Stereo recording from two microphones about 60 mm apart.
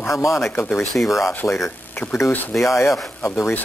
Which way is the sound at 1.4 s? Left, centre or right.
Left.